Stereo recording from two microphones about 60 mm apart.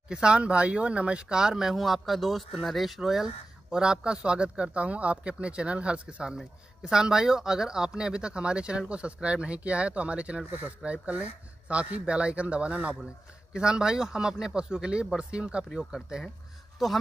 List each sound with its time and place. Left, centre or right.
0.1 s speech: centre